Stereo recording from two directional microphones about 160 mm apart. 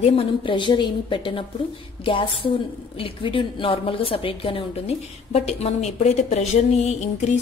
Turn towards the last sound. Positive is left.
turn(degrees=45)  # may be behind; listen again after turning